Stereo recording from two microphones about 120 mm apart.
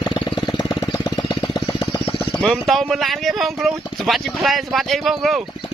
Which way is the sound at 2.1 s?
5° left (ahead or behind).